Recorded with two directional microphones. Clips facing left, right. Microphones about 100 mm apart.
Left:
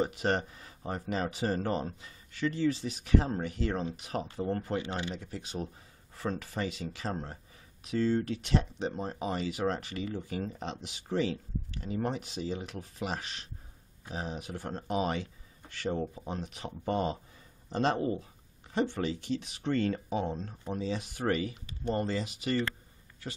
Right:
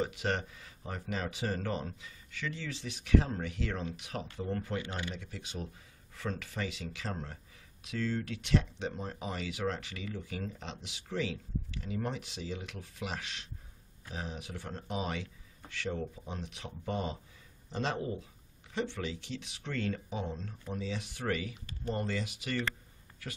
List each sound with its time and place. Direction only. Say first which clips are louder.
0.0 s speech: left 4 dB; 40° left (ahead or behind)
5.1 s speech: left 4 dB; 45° left (ahead or behind)